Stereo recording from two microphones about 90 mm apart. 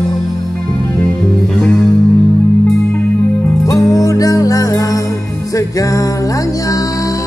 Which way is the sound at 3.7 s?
40° left (ahead or behind).